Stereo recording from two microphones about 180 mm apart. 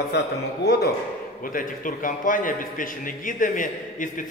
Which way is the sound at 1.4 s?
50° left (ahead or behind).